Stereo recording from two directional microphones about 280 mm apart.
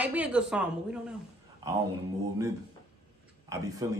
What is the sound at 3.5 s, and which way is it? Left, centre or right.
Speech, centre.